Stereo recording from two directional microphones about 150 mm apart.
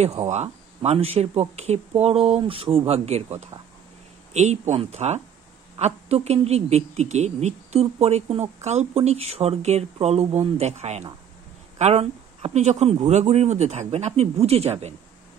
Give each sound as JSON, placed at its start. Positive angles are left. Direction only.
{"t": 0.0, "sound": "speech", "side_deg": -45}